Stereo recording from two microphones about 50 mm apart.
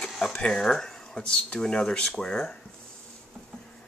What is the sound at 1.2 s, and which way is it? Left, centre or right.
A man's voice, left.